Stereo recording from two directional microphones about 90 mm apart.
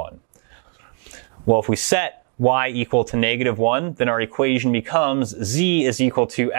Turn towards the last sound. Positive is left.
turn(degrees=5)  # may be behind; listen again after turning